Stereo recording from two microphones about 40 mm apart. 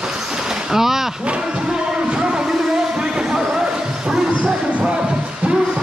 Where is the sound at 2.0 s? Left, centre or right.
Right.